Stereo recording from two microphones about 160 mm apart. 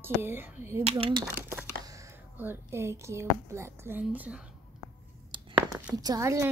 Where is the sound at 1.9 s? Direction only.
20° right (ahead or behind).